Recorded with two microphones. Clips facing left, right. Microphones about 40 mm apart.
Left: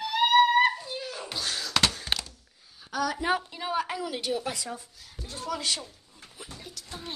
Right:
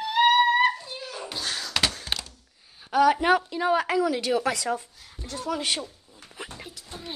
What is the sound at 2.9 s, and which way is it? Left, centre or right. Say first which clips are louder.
Speech: right 9 dB; right.